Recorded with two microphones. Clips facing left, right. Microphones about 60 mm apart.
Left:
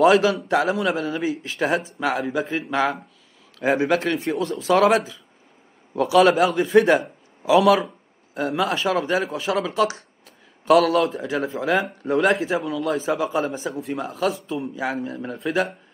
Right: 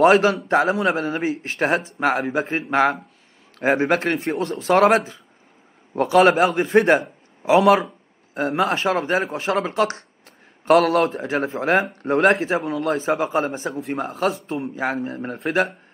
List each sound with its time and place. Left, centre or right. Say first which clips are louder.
0.0 s a man's voice: right 1 dB; right